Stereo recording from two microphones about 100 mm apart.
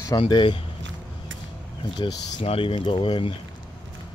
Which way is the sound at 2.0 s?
50° left (ahead or behind).